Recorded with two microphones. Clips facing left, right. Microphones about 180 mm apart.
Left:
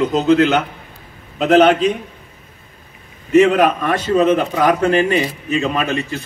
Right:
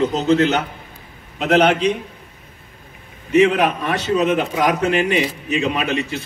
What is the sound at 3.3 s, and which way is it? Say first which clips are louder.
A man's voice: left 3 dB; 45° left (ahead or behind).